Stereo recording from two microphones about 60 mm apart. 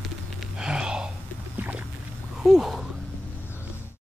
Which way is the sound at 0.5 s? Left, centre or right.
Centre.